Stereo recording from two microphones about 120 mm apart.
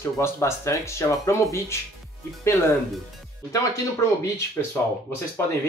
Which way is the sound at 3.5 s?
25° left (ahead or behind).